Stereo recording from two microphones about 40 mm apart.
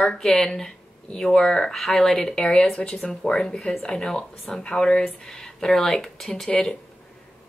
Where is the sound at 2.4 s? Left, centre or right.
Left.